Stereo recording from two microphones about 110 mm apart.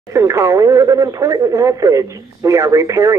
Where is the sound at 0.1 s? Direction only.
25° right (ahead or behind).